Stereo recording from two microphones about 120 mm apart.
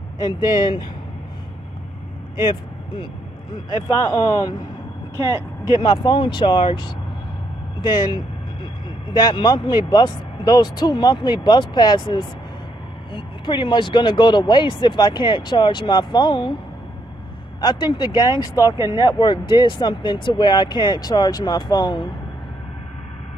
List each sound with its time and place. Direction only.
0.2 s speech: 35° left (ahead or behind)
3.9 s speech: 30° left (ahead or behind)
5.8 s speech: 45° left (ahead or behind)
17.6 s speech: 40° left (ahead or behind)